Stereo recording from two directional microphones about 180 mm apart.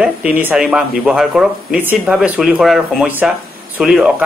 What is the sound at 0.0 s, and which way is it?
Speech, 5° right (ahead or behind).